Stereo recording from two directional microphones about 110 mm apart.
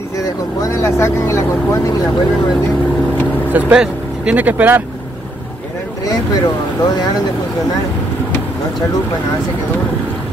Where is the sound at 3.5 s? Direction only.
10° right (ahead or behind).